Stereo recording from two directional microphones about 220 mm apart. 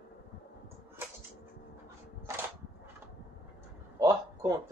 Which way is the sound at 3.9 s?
15° right (ahead or behind).